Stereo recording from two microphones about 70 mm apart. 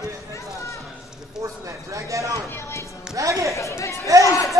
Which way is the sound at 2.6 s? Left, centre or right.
Left.